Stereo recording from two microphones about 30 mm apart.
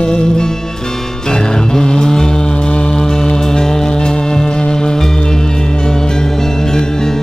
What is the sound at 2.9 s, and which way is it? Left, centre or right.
Music, centre.